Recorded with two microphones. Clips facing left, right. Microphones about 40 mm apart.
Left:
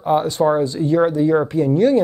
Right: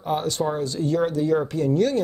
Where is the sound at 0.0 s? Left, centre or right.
Centre.